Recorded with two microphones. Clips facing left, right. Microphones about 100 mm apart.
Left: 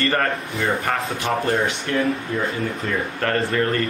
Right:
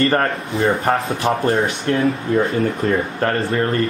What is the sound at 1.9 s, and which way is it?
Speech, 40° right (ahead or behind).